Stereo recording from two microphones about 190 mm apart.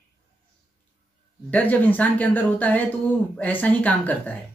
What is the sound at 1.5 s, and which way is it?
Speech, 10° left (ahead or behind).